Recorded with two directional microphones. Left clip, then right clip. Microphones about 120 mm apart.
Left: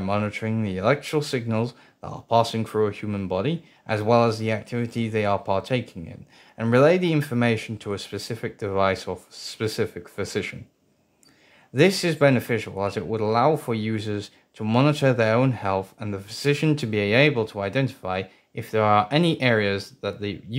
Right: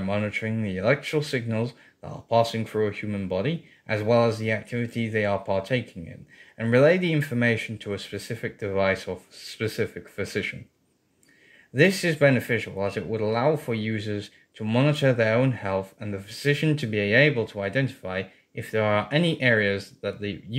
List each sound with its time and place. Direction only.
0.0 s speech: 35° left (ahead or behind)
11.7 s speech: 35° left (ahead or behind)
16.5 s speech: 40° left (ahead or behind)